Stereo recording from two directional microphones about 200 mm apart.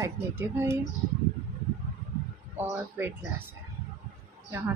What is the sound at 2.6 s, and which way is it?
Speech, 10° right (ahead or behind).